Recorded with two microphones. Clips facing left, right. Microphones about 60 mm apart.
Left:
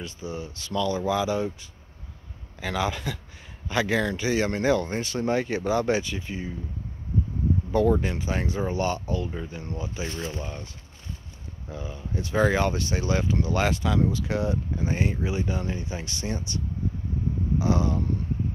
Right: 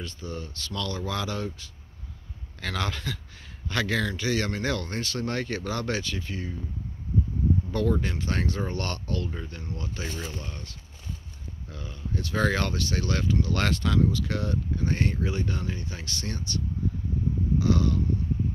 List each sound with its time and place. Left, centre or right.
0.0 s speech: centre
7.7 s speech: centre